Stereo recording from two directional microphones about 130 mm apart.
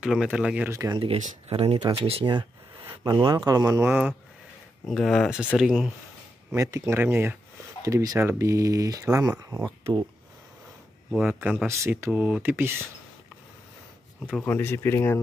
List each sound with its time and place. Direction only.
0.0 s speech: 5° right (ahead or behind)
0.7 s speech: 25° right (ahead or behind)
0.9 s speech: 45° right (ahead or behind)
3.4 s speech: 25° right (ahead or behind)
3.8 s speech: 10° right (ahead or behind)
4.8 s speech: 5° left (ahead or behind)
6.5 s speech: 20° right (ahead or behind)
7.8 s speech: 25° right (ahead or behind)
11.2 s speech: 10° right (ahead or behind)
11.6 s speech: 20° right (ahead or behind)
12.1 s speech: 10° right (ahead or behind)
14.4 s speech: 15° left (ahead or behind)